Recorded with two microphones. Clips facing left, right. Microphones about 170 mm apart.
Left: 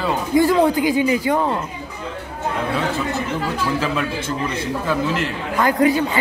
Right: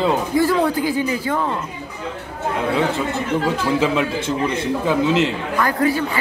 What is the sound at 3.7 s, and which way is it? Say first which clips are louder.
Speech: right 3 dB; 20° right (ahead or behind).